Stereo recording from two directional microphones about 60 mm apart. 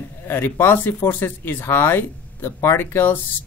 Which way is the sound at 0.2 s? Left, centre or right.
Left.